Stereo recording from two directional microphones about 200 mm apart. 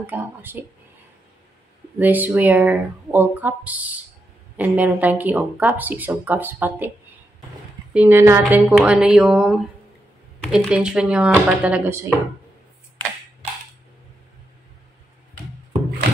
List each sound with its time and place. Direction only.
0.0 s speech: 10° right (ahead or behind)
2.0 s speech: 10° right (ahead or behind)
7.9 s speech: 10° right (ahead or behind)